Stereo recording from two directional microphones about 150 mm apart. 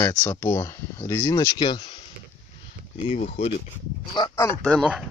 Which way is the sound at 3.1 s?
50° left (ahead or behind).